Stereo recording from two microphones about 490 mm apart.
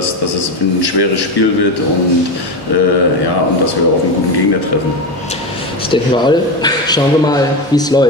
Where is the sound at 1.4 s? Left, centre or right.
Left.